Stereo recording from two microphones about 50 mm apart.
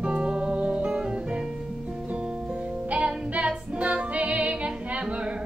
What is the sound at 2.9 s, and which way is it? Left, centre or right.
Music, centre.